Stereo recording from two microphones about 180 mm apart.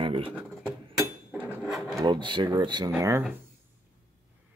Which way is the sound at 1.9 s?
25° right (ahead or behind).